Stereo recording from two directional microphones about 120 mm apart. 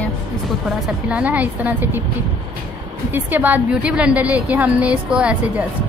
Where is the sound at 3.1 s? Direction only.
15° right (ahead or behind).